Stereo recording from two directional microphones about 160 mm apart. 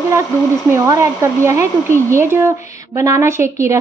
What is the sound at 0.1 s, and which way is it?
Speech, 20° right (ahead or behind).